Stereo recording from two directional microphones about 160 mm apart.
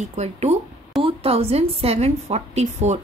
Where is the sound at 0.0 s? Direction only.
45° right (ahead or behind).